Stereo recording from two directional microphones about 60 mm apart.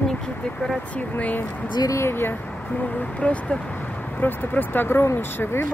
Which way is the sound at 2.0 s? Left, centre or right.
Left.